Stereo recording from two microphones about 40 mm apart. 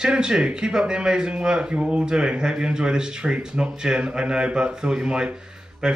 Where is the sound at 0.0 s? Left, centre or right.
Right.